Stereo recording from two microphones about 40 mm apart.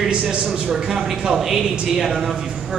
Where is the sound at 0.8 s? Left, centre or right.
Centre.